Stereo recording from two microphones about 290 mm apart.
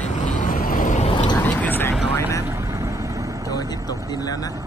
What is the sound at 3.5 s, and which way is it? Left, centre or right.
Vehicle, centre.